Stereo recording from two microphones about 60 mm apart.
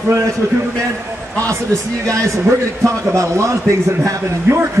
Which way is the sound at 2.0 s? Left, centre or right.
Right.